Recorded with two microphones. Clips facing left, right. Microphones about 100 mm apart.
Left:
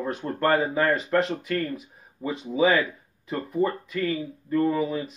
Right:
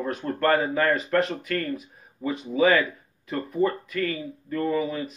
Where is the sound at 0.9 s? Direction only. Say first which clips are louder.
Even; 20° left (ahead or behind).